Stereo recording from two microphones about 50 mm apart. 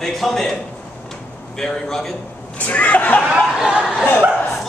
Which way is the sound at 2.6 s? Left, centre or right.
Left.